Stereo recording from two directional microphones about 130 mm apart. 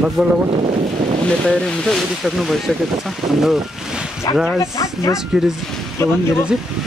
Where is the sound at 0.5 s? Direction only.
45° right (ahead or behind).